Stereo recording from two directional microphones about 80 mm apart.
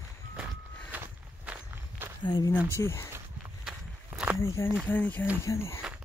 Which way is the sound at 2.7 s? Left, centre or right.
Left.